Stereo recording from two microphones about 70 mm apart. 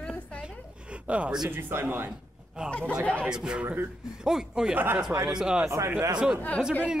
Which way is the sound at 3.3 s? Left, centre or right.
Centre.